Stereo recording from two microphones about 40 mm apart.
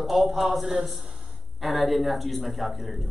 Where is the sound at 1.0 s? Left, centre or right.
Centre.